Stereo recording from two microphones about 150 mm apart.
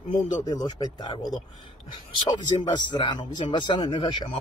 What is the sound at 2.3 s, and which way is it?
Speech, 30° left (ahead or behind).